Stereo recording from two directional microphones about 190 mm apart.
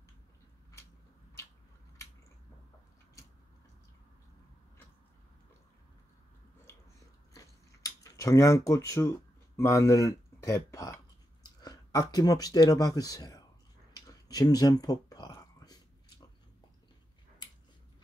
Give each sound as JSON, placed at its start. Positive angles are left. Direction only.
{"t": 6.6, "sound": "chewing", "side_deg": 15}
{"t": 9.6, "sound": "speech", "side_deg": 15}
{"t": 13.9, "sound": "a sound", "side_deg": 20}